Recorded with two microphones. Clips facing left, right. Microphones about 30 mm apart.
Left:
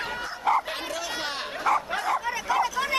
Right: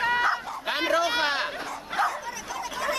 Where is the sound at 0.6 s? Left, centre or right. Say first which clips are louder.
Right 8 dB; right.